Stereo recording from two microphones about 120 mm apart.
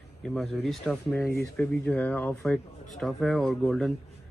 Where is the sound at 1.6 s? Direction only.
15° left (ahead or behind).